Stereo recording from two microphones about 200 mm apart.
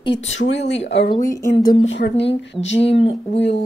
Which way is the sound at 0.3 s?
70° left (ahead or behind).